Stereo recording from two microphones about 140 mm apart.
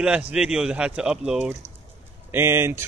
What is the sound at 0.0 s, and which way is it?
Speech, 5° right (ahead or behind).